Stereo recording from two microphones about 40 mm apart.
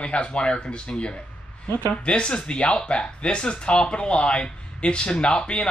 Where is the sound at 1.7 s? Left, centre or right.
Left.